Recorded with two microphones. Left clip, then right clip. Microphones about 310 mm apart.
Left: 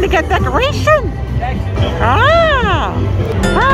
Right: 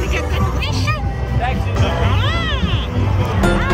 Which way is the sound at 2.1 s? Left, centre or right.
Centre.